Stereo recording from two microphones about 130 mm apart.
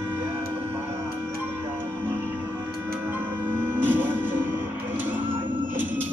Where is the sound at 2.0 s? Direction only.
15° right (ahead or behind).